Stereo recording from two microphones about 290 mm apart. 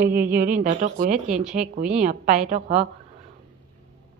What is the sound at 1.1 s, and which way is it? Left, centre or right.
Speech, centre.